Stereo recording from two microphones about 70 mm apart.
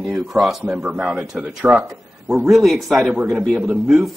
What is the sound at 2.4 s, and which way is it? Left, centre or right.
Speech, centre.